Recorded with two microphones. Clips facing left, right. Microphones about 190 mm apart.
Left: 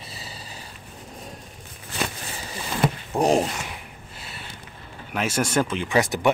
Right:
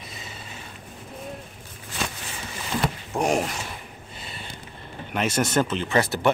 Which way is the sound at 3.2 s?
30° left (ahead or behind).